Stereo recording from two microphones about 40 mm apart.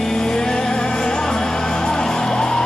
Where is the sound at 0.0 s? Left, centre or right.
Centre.